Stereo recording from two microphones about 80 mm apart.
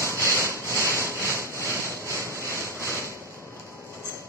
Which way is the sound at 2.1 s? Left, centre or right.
Right.